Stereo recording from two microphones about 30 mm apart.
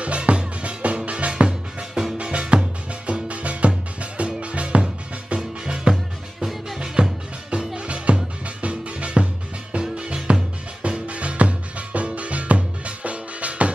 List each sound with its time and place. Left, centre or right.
0.0 s music: right
5.3 s music: right
7.0 s music: right